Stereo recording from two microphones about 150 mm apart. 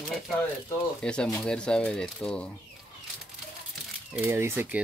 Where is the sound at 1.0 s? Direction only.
5° left (ahead or behind).